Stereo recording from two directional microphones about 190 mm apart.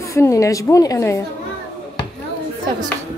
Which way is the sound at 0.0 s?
15° left (ahead or behind).